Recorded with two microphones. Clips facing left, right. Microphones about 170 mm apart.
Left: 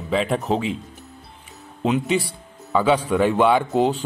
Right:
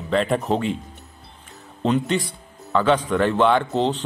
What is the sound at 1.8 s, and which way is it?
Speech, 5° left (ahead or behind).